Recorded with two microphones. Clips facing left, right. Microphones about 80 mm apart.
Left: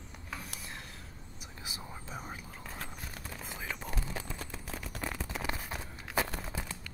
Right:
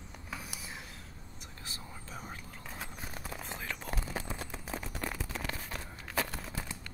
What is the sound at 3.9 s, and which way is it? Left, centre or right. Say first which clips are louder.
Whispering: right 2 dB; centre.